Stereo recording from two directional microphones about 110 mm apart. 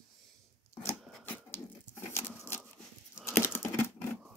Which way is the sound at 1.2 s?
15° left (ahead or behind).